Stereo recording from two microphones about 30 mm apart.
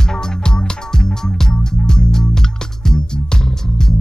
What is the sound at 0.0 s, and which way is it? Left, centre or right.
Music, left.